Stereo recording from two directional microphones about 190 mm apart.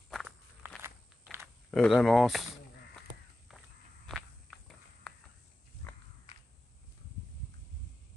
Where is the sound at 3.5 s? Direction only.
Centre (ahead or behind).